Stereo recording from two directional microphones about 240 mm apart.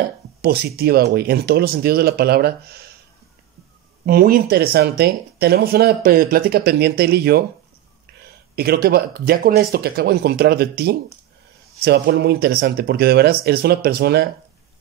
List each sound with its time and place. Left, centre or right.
0.4 s speech: right
4.0 s speech: right
11.8 s speech: right